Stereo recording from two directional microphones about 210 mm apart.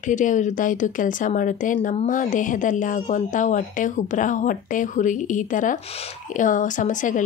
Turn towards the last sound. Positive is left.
turn(degrees=40)  # may be behind; listen again after turning